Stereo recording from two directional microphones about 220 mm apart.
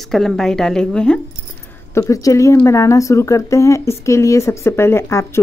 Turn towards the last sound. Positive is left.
turn(degrees=10)  # may be behind; listen again after turning